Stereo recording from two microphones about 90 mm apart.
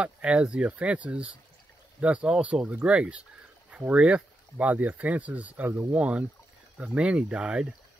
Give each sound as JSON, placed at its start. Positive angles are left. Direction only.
{"t": 0.0, "sound": "speech", "side_deg": -10}